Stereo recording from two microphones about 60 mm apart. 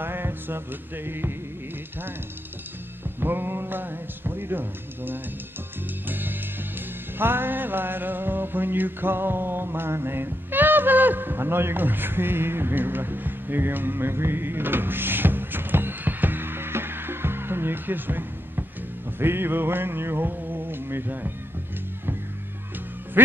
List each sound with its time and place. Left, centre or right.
0.0 s music: right
3.2 s speech: right
6.0 s music: right
7.2 s a sound: right
23.2 s quack: right